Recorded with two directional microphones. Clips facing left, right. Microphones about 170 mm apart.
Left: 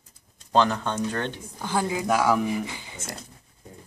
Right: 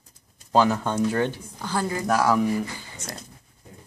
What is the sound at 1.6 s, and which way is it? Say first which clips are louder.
Speech: left 1 dB; 15° left (ahead or behind).